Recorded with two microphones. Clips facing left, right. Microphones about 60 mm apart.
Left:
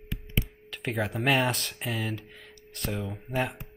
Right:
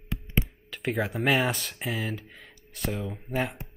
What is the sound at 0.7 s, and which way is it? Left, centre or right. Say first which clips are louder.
Speech: right 2 dB; centre.